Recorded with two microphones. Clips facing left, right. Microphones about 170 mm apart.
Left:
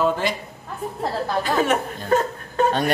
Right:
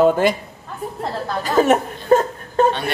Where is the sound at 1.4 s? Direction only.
40° right (ahead or behind).